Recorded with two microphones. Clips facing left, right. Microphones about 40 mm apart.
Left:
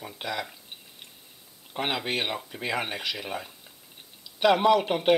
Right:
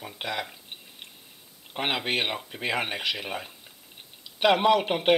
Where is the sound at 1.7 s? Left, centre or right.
Right.